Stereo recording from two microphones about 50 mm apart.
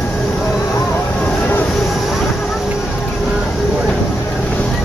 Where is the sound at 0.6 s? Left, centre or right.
Left.